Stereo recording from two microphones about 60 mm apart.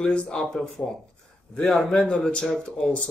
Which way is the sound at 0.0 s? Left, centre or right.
Centre.